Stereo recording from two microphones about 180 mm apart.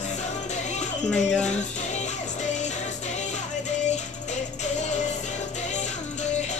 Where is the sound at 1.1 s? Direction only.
5° left (ahead or behind).